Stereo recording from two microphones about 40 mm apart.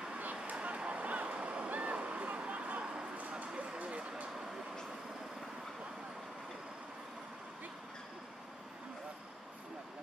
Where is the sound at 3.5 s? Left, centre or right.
Right.